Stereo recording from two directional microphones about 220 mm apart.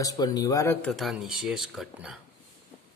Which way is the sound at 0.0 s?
15° left (ahead or behind).